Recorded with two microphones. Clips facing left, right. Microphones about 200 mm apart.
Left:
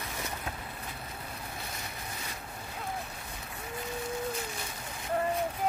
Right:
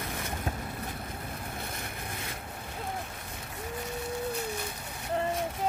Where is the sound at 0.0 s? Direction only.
50° right (ahead or behind).